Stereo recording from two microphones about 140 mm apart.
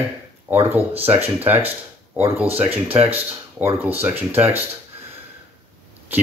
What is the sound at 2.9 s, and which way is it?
Speech, 45° right (ahead or behind).